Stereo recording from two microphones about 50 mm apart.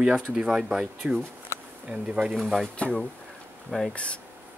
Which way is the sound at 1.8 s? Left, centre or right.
Right.